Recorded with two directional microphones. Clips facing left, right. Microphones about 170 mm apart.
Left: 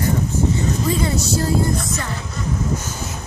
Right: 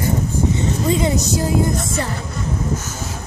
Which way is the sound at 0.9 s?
20° right (ahead or behind).